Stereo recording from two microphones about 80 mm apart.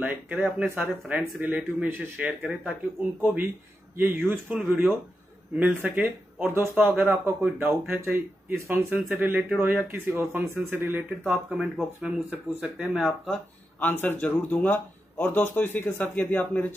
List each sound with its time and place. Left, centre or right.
0.0 s speech: right
11.2 s speech: centre
13.3 s speech: centre